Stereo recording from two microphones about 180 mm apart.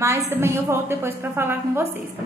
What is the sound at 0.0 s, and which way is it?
A woman's voice, 15° right (ahead or behind).